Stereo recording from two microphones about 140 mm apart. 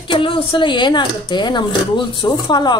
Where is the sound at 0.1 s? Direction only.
40° left (ahead or behind).